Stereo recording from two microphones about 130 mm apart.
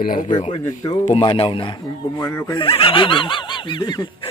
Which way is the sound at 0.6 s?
30° left (ahead or behind).